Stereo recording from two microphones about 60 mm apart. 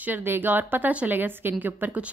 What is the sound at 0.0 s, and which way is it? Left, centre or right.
A woman's voice, right.